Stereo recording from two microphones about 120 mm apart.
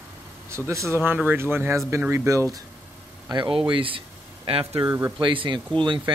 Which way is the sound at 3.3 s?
40° right (ahead or behind).